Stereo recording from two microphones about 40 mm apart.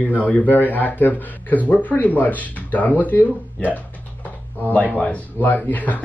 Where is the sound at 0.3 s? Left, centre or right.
Left.